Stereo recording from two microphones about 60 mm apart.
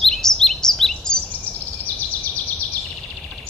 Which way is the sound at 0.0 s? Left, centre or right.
Centre.